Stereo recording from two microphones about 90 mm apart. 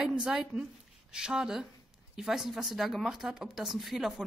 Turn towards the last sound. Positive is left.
turn(degrees=-5)  # may be behind; listen again after turning